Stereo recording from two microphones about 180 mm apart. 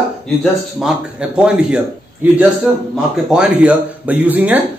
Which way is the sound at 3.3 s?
5° right (ahead or behind).